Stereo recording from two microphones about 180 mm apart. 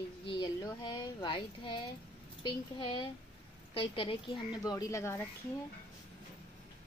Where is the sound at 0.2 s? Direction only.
25° left (ahead or behind).